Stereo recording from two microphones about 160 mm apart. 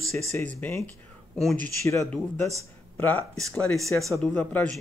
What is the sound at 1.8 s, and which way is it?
Speech, 15° left (ahead or behind).